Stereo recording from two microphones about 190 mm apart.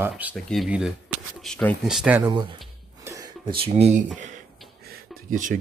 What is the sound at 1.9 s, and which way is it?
Speech, 5° right (ahead or behind).